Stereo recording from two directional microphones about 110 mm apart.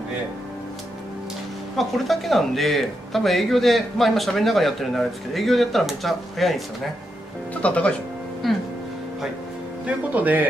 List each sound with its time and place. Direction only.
1.8 s speech: centre (ahead or behind)
7.6 s speech: 10° left (ahead or behind)
8.4 s music: centre (ahead or behind)
9.8 s speech: 15° right (ahead or behind)